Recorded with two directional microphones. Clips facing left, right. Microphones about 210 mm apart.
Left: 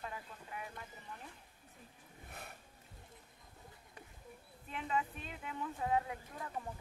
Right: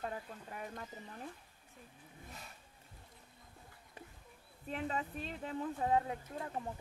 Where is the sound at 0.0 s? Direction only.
45° right (ahead or behind).